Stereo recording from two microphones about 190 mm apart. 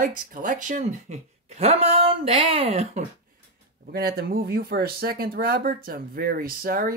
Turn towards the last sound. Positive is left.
turn(degrees=-50)  # may be behind; listen again after turning